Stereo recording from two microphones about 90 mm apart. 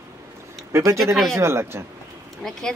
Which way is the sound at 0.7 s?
35° right (ahead or behind).